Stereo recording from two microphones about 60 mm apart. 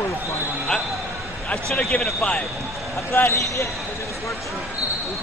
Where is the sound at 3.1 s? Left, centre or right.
Left.